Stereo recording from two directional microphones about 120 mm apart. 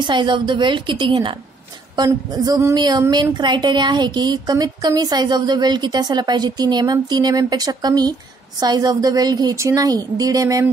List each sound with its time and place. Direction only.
0.0 s a woman's voice: 40° right (ahead or behind)
2.0 s a woman's voice: 30° right (ahead or behind)